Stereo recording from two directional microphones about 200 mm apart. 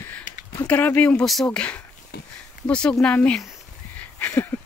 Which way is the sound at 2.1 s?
50° left (ahead or behind).